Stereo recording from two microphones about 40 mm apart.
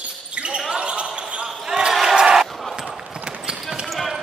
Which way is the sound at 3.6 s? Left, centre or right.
Centre.